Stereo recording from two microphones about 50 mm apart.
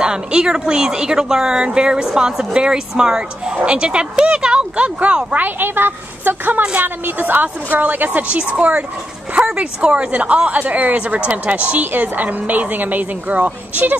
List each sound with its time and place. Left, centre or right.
0.0 s a woman's voice: centre
5.6 s speech: right
6.6 s a woman's voice: right
7.1 s a woman's voice: right